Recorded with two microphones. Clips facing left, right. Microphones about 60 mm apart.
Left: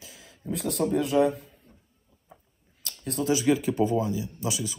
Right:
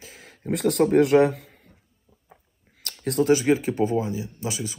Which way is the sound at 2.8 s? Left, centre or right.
Right.